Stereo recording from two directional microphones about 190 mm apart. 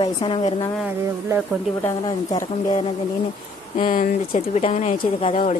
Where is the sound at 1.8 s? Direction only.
15° left (ahead or behind).